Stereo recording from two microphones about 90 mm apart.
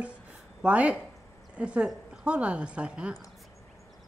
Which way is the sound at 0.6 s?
15° right (ahead or behind).